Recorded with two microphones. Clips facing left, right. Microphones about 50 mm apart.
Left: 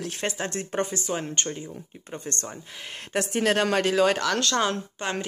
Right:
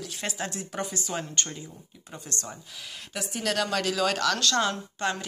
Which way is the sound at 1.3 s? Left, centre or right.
Left.